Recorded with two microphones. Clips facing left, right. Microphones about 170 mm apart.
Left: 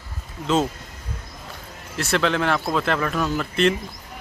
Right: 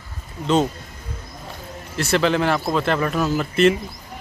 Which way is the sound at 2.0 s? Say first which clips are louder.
Right 3 dB; centre (ahead or behind).